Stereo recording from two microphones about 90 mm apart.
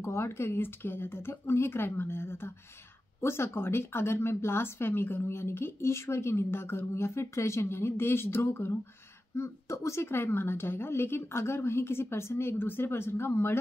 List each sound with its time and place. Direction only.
0.0 s speech: 30° left (ahead or behind)